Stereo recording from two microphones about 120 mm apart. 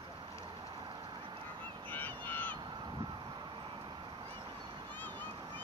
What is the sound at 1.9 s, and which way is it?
Crow, 15° left (ahead or behind).